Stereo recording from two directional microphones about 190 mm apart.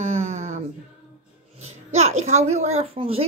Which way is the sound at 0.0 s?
35° right (ahead or behind).